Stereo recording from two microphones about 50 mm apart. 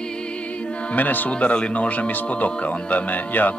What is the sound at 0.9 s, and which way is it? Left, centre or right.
Speech, left.